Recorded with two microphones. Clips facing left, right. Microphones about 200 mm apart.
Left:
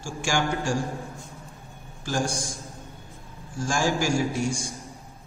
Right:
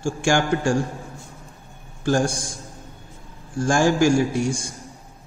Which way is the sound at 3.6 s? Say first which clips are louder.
Right 7 dB; 55° right (ahead or behind).